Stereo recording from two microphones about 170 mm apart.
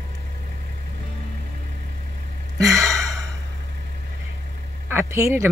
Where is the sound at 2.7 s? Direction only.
20° right (ahead or behind).